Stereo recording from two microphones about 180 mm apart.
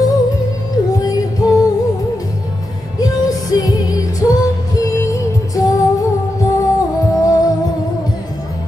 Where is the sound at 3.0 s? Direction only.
20° left (ahead or behind).